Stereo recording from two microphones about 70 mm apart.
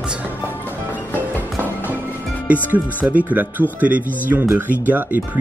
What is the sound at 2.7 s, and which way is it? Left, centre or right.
Speech, right.